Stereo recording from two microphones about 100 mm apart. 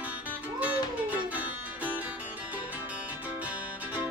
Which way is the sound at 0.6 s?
15° right (ahead or behind).